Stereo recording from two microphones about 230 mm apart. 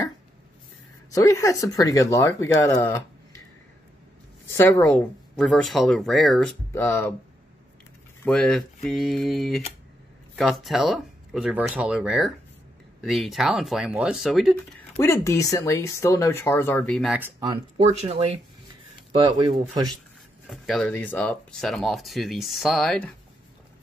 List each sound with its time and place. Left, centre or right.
1.1 s speech: centre
4.6 s speech: centre
8.3 s speech: centre
15.0 s speech: centre
17.4 s speech: right
20.4 s speech: centre